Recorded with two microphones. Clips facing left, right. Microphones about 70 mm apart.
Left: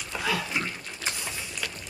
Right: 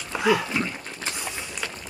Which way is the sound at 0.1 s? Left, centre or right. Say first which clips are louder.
Right 8 dB; right.